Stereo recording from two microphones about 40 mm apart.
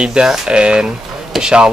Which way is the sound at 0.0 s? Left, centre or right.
Right.